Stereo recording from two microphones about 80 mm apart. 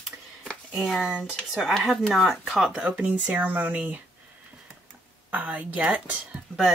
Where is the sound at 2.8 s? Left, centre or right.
Centre.